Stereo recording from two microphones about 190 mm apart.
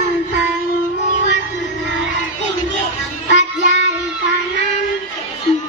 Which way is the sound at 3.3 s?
40° left (ahead or behind).